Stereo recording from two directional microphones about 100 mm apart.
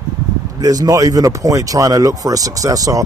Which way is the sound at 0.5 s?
40° right (ahead or behind).